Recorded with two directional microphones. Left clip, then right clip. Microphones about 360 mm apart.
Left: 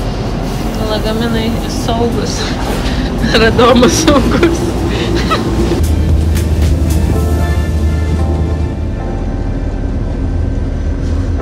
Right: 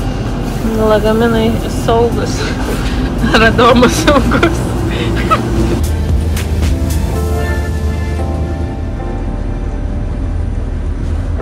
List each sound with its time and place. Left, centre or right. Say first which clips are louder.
0.8 s speech: right 6 dB; centre
5.0 s music: right 2 dB; centre